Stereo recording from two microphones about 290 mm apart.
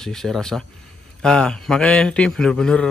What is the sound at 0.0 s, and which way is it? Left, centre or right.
Speech, centre.